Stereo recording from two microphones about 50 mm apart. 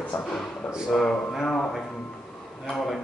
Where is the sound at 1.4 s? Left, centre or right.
Centre.